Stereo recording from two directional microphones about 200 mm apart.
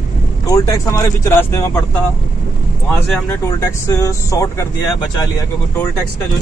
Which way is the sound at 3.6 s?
15° left (ahead or behind).